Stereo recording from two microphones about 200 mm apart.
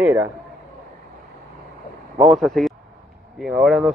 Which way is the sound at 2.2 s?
Centre (ahead or behind).